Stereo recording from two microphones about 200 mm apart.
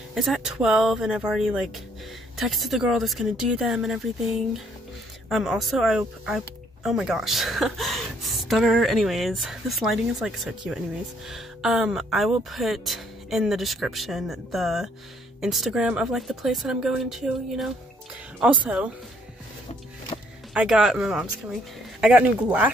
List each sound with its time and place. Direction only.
0.1 s speech: centre (ahead or behind)
20.1 s music: 30° left (ahead or behind)
20.5 s speech: 5° right (ahead or behind)